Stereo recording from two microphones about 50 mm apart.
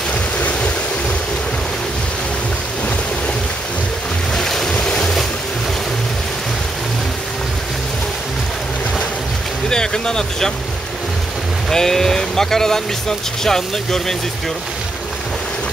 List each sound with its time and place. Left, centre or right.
0.4 s a sound: left
4.4 s boat: centre
9.7 s speech: centre
11.7 s speech: centre